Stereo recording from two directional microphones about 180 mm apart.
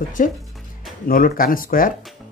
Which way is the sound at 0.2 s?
50° left (ahead or behind).